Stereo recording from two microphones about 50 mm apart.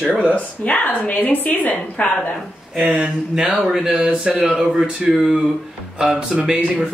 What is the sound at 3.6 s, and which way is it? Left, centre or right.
Speech, centre.